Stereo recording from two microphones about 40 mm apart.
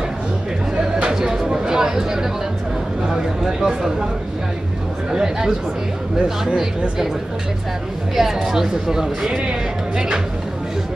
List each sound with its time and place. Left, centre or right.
1.1 s a sound: centre
3.1 s speech: centre
5.1 s speech: centre
8.1 s speech: centre
9.3 s speech: right